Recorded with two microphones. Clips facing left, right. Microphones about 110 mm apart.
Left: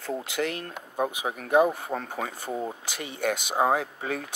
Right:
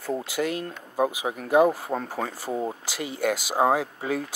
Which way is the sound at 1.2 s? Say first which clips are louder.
Right 1 dB; 25° right (ahead or behind).